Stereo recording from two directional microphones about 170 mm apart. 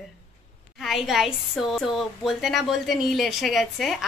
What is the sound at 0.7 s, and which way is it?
A woman's voice, centre (ahead or behind).